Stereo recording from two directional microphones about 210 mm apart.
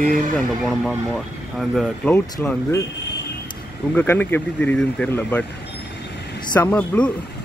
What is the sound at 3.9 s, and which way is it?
Speech, 10° left (ahead or behind).